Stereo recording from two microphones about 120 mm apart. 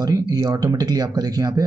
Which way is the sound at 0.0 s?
35° right (ahead or behind).